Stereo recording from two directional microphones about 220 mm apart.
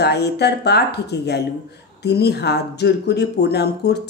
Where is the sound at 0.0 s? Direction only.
50° left (ahead or behind).